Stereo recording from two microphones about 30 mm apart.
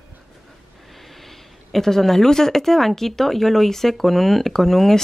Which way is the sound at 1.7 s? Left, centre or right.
Centre.